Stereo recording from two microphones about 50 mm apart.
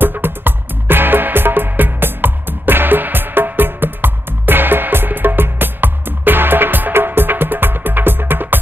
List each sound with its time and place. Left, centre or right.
0.0 s music: right